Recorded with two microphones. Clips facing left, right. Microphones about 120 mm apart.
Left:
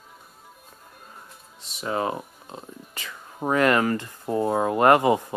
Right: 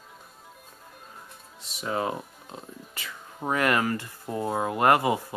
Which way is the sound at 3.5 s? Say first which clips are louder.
Left 4 dB; 35° left (ahead or behind).